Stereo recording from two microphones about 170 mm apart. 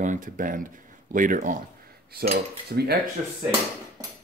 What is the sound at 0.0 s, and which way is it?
Speech, 50° right (ahead or behind).